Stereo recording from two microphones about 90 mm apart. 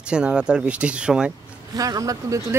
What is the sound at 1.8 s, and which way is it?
Speech, 40° right (ahead or behind).